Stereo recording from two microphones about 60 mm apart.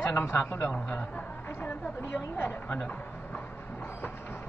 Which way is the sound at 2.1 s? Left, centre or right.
Left.